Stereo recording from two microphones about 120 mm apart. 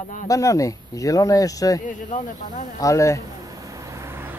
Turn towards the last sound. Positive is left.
turn(degrees=-20)  # may be behind; listen again after turning